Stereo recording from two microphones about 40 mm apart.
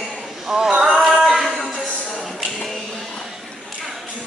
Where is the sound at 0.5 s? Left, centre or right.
Centre.